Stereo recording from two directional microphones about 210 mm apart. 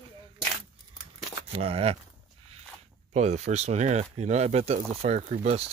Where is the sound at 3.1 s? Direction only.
30° right (ahead or behind).